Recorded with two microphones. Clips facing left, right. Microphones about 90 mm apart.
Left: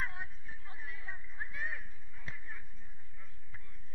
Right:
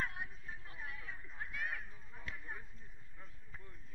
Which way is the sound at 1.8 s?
20° right (ahead or behind).